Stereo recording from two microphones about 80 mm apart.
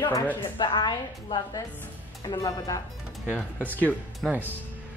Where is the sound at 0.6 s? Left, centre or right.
Left.